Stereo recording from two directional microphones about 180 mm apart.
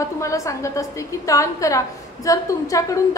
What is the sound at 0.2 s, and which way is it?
A woman's voice, 15° left (ahead or behind).